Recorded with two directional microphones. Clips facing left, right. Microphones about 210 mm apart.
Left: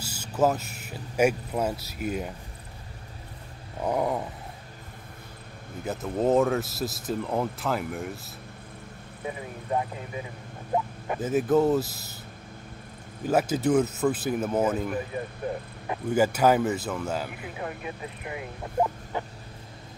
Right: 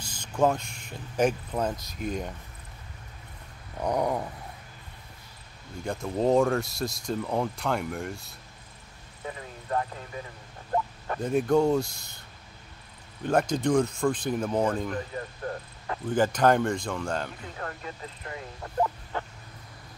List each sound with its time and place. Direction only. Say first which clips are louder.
0.0 s speech: left 1 dB; 5° left (ahead or behind)
3.8 s speech: even; 5° left (ahead or behind)
5.8 s speech: left 1 dB; 5° left (ahead or behind)
9.2 s speech: left 4 dB; 10° left (ahead or behind)
13.2 s speech: left 1 dB; 5° left (ahead or behind)